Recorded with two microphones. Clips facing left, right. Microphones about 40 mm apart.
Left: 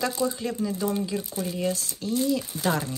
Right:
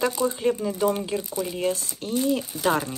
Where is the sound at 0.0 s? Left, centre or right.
Right.